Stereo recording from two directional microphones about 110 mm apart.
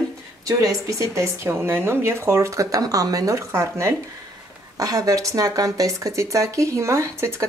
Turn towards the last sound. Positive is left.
turn(degrees=-25)  # may be behind; listen again after turning